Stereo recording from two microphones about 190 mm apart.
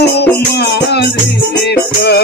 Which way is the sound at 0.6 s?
60° left (ahead or behind).